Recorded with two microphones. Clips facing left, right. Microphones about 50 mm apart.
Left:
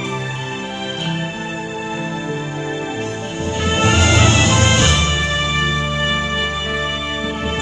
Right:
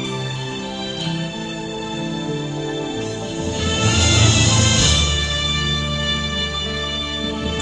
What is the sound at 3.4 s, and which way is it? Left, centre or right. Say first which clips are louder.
Music: left 4 dB; left.